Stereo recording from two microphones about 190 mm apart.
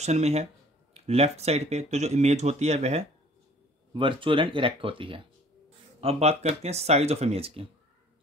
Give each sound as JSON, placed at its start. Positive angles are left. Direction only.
{"t": 0.0, "sound": "speech", "side_deg": -35}